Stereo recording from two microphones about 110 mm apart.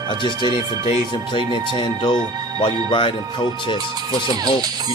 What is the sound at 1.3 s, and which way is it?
Speech, 45° left (ahead or behind).